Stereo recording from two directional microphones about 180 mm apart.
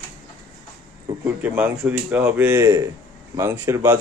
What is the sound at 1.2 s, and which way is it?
Speech, 10° right (ahead or behind).